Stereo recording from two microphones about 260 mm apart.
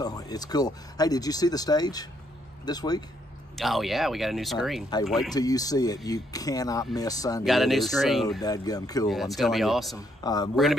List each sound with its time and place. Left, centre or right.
0.0 s speech: centre
3.5 s speech: centre
4.9 s speech: centre
7.4 s speech: centre
8.4 s speech: centre
9.1 s speech: centre
9.9 s speech: centre
10.5 s speech: centre